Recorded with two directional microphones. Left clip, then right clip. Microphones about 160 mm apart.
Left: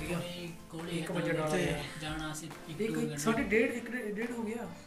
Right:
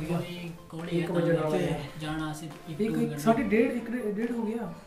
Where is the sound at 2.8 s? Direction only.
65° right (ahead or behind).